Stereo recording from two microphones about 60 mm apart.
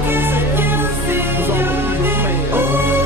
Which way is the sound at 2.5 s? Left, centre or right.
Right.